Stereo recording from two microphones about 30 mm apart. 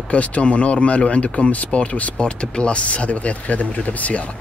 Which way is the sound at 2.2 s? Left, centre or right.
Left.